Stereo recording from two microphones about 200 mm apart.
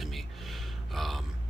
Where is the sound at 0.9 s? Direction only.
Centre (ahead or behind).